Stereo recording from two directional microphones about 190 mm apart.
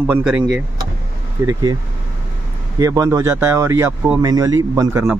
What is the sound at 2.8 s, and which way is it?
Speech, 15° right (ahead or behind).